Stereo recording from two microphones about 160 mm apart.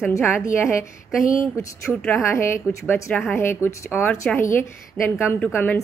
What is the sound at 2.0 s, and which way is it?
Speech, 15° left (ahead or behind).